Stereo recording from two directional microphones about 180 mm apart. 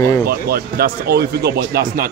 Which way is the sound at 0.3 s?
55° right (ahead or behind).